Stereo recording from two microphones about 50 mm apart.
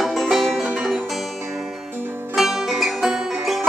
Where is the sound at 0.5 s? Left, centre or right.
Right.